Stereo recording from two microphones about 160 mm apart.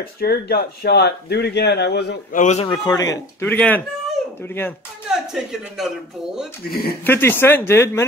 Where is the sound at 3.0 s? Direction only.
20° left (ahead or behind).